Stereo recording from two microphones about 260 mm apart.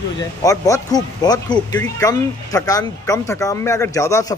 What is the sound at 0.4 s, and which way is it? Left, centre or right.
Speech, centre.